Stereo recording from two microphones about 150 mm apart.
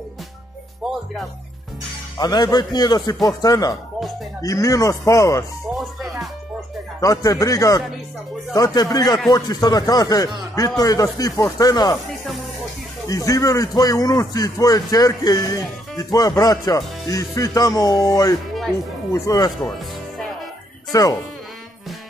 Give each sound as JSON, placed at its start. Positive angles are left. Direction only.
{"t": 2.1, "sound": "a man's voice", "side_deg": 25}
{"t": 7.0, "sound": "a man's voice", "side_deg": 20}
{"t": 12.1, "sound": "music", "side_deg": 0}
{"t": 13.1, "sound": "a man's voice", "side_deg": 25}
{"t": 20.9, "sound": "a man's voice", "side_deg": 25}